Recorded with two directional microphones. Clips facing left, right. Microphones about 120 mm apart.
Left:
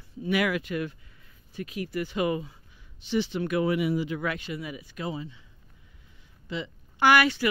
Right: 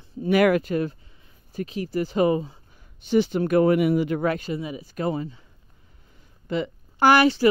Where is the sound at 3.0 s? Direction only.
45° right (ahead or behind).